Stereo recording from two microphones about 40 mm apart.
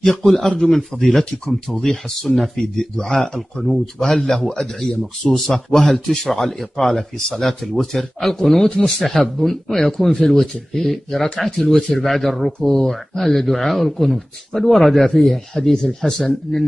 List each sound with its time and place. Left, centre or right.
0.0 s a man's voice: centre
8.6 s speech: left
9.4 s a man's voice: centre
12.6 s a man's voice: centre